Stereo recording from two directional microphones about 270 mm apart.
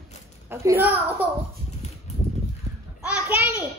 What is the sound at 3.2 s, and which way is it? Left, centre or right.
Speech, centre.